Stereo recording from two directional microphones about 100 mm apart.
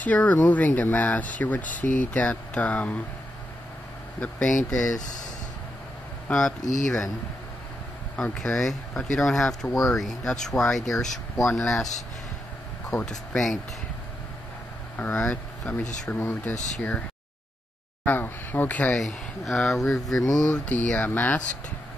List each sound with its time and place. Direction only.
0.0 s speech: 15° left (ahead or behind)
4.2 s speech: 10° left (ahead or behind)
6.3 s speech: 5° left (ahead or behind)
8.2 s speech: 5° left (ahead or behind)
12.9 s speech: 10° left (ahead or behind)
15.0 s speech: 10° left (ahead or behind)
15.7 s speech: 20° left (ahead or behind)
18.0 s speech: 20° left (ahead or behind)
18.9 s speech: centre (ahead or behind); by 21.4 s 20° left (ahead or behind)